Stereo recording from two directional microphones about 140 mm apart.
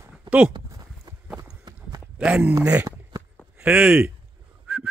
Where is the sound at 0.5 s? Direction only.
30° right (ahead or behind).